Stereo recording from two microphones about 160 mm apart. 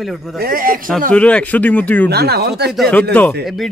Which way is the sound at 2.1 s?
85° right.